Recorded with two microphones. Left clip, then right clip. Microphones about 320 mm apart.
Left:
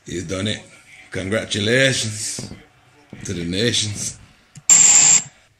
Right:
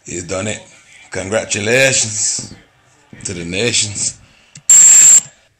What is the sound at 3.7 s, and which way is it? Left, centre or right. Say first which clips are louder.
Speech: right 4 dB; centre.